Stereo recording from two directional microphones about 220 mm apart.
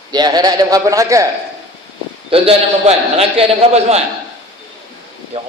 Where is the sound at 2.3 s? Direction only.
25° right (ahead or behind).